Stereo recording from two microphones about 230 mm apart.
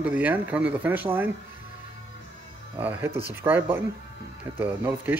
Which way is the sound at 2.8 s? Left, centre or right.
Centre.